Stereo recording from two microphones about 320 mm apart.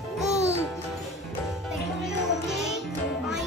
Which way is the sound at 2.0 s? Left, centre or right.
Centre.